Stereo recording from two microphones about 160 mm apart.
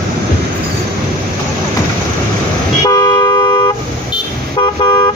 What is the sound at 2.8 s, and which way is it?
Toot, 20° left (ahead or behind).